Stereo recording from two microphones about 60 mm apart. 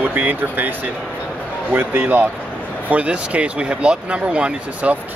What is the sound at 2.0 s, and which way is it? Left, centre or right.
Speech, right.